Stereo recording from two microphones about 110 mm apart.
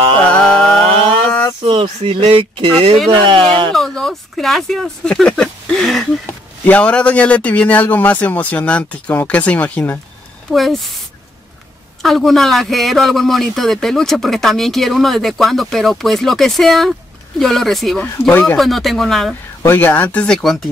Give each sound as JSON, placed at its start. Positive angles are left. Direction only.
{"t": 0.3, "sound": "a sound", "side_deg": 10}
{"t": 1.6, "sound": "speech", "side_deg": -50}
{"t": 3.7, "sound": "speech", "side_deg": 5}
{"t": 6.2, "sound": "speech", "side_deg": 15}
{"t": 10.5, "sound": "a man's voice", "side_deg": 0}
{"t": 12.0, "sound": "a man's voice", "side_deg": 0}
{"t": 19.6, "sound": "speech", "side_deg": 20}